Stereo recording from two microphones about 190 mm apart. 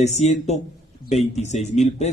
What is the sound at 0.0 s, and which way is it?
Speech, 35° left (ahead or behind).